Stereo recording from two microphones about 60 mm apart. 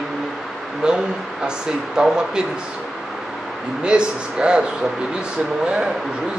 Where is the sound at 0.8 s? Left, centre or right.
Centre.